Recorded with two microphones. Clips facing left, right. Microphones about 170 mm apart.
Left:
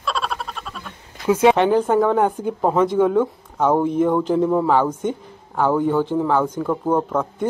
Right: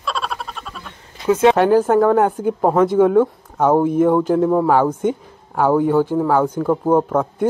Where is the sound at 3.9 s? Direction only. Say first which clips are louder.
Right 3 dB; 50° right (ahead or behind).